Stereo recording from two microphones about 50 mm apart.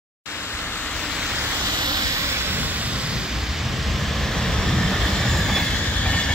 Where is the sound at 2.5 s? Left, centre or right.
Right; by 5.7 s centre.